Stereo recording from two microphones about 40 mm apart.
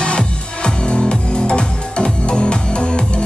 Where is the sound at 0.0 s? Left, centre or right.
Left.